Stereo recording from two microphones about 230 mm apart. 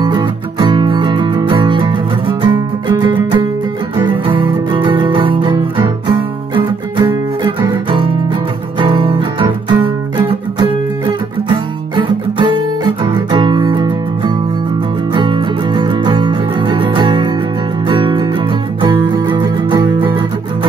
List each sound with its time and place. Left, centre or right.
0.0 s music: centre